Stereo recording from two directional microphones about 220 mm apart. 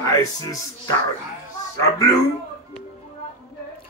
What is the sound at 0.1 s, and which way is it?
Speech, 15° left (ahead or behind).